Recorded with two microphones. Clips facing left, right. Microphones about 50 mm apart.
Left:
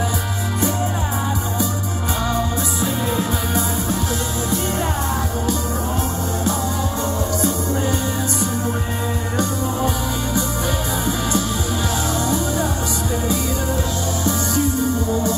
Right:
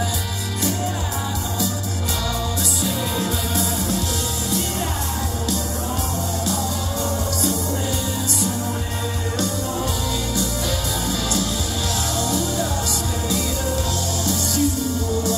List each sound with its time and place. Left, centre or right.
2.8 s music: left
12.3 s music: centre
14.2 s music: left